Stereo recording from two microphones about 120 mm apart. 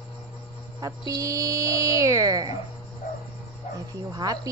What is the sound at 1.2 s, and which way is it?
Speech, 30° right (ahead or behind).